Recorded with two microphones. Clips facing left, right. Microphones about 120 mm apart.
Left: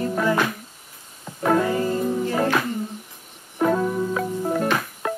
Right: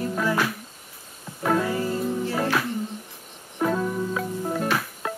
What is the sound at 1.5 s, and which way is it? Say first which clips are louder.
Music: left 3 dB; centre (ahead or behind).